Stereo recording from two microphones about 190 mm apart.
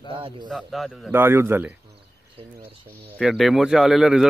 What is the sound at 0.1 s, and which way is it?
Bird, 30° right (ahead or behind).